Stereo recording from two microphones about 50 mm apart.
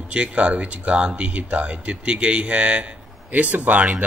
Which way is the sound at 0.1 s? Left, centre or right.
Right.